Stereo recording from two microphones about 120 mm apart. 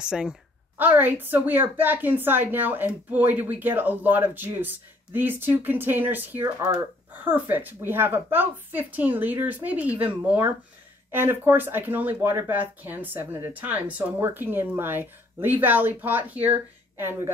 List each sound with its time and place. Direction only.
0.0 s a woman's voice: 5° right (ahead or behind)